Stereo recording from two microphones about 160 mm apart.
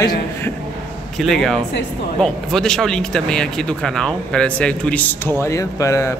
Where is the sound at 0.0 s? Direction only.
25° left (ahead or behind).